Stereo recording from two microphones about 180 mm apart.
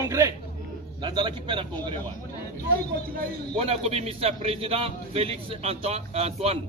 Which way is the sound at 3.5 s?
35° right (ahead or behind).